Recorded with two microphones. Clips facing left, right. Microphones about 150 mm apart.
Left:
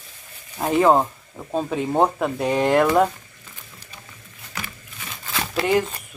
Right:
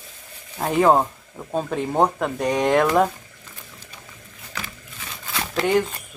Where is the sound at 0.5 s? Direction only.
Centre (ahead or behind).